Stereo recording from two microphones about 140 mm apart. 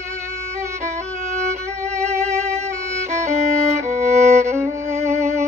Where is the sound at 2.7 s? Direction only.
20° right (ahead or behind).